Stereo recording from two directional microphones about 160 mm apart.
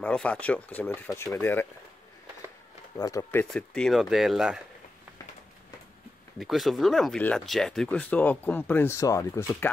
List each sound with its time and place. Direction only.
0.0 s speech: 5° left (ahead or behind)
3.0 s speech: 20° left (ahead or behind)
3.5 s speech: 5° left (ahead or behind)
6.4 s speech: centre (ahead or behind); by 9.7 s 20° left (ahead or behind)